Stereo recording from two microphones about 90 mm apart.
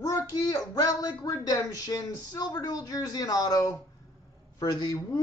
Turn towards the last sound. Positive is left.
turn(degrees=45)  # may be behind; listen again after turning